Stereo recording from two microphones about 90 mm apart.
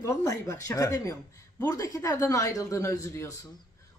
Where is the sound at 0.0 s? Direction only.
40° left (ahead or behind).